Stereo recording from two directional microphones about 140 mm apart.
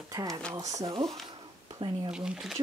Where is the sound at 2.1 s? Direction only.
5° right (ahead or behind).